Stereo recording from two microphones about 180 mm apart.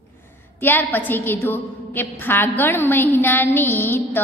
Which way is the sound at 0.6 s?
10° left (ahead or behind).